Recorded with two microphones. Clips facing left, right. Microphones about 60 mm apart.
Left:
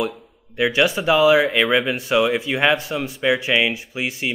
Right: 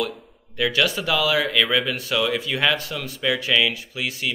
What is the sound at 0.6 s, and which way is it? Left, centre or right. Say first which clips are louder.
Speech: left 3 dB; left.